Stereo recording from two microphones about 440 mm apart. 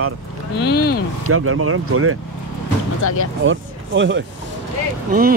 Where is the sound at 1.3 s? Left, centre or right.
Right.